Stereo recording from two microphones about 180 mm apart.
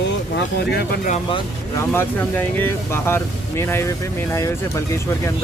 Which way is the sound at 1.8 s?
10° left (ahead or behind).